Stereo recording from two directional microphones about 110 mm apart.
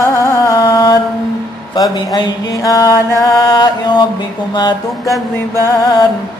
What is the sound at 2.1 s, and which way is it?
Music, 35° left (ahead or behind).